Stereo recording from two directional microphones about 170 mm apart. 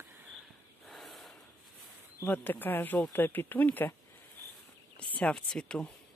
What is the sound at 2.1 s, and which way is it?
Speech, 10° left (ahead or behind).